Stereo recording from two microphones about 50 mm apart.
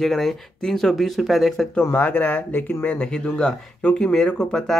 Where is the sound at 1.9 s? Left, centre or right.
Left.